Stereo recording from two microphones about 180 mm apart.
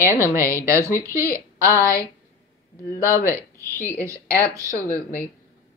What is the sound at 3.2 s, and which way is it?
A woman's voice, 15° right (ahead or behind).